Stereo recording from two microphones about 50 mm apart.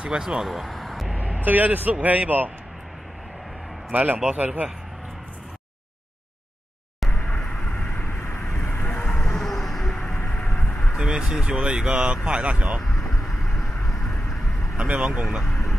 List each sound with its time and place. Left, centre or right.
0.0 s speech: centre
0.5 s a sound: centre
1.1 s speech: right
3.9 s a man's voice: right
7.1 s vehicle: left
8.1 s vehicle: left
8.6 s vehicle: left
9.2 s vehicle: centre
10.0 s vehicle: left
11.0 s speech: centre
13.2 s vehicle: centre
14.8 s speech: right